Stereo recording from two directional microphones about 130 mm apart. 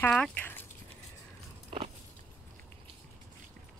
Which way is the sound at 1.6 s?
55° right (ahead or behind).